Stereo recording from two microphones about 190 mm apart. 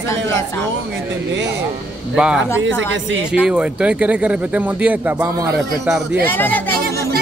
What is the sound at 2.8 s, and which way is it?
Speech, 85° right.